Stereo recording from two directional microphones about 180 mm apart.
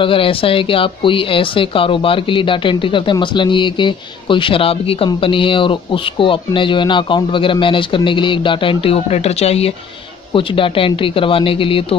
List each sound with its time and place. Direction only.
0.0 s speech: 30° left (ahead or behind)